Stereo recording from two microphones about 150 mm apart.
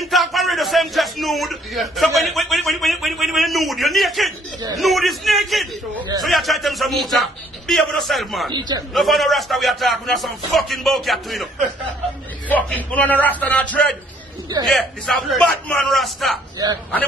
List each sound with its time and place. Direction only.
0.0 s a sound: centre (ahead or behind)
4.7 s a man's voice: centre (ahead or behind)
8.5 s a man's voice: 30° right (ahead or behind)
8.9 s a man's voice: centre (ahead or behind)
12.6 s a man's voice: 10° left (ahead or behind)